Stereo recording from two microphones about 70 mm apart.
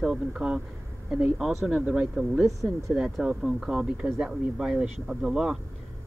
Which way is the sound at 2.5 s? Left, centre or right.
Right.